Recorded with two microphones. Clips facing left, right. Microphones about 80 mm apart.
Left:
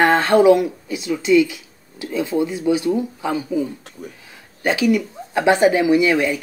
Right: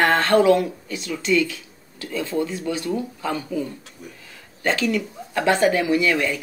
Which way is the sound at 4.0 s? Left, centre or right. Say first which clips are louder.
Left 7 dB; left.